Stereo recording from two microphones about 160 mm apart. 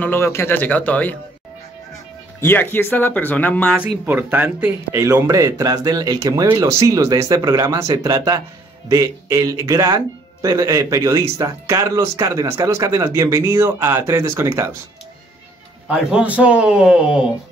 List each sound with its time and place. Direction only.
0.0 s speech: 15° left (ahead or behind)
2.4 s speech: 15° left (ahead or behind)
3.7 s speech: 15° right (ahead or behind)
15.9 s a man's voice: 5° right (ahead or behind)